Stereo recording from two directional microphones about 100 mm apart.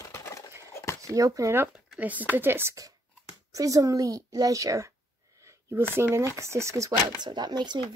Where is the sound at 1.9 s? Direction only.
15° right (ahead or behind).